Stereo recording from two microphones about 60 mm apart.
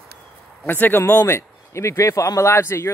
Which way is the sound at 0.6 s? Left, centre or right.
Left.